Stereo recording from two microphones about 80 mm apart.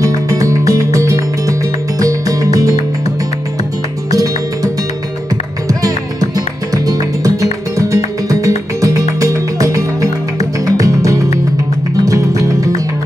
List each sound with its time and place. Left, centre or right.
0.0 s music: right
5.7 s music: right